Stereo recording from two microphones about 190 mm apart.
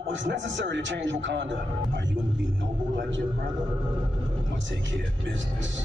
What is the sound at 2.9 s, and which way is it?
Speech, 75° right (ahead or behind).